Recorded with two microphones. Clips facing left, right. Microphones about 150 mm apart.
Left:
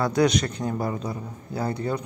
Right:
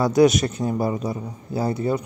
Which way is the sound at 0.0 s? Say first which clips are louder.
Right 5 dB; 20° right (ahead or behind).